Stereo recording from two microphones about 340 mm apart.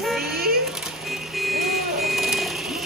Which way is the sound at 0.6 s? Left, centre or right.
Centre.